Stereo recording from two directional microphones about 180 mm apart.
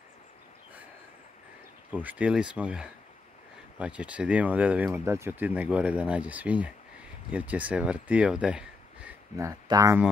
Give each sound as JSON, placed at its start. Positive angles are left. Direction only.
{"t": 1.9, "sound": "speech", "side_deg": -10}
{"t": 9.5, "sound": "speech", "side_deg": -20}